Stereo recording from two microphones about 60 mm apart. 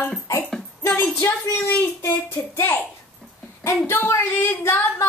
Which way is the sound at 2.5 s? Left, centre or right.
Left.